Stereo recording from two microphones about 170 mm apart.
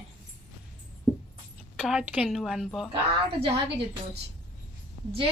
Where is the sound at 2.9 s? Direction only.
30° right (ahead or behind).